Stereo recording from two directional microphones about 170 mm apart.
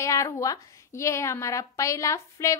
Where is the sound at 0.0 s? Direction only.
20° left (ahead or behind).